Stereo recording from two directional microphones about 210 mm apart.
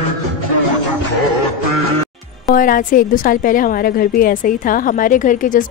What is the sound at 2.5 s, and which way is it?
A woman's voice, 40° left (ahead or behind).